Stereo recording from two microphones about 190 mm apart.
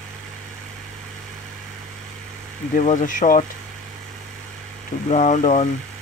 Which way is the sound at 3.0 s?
45° left (ahead or behind).